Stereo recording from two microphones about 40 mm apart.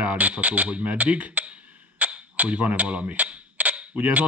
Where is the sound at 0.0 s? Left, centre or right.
Right.